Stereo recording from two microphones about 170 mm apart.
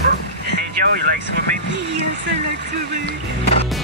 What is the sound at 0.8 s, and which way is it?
Speech, 80° right.